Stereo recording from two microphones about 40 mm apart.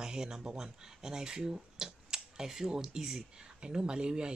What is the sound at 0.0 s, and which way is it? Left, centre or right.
Speech, centre.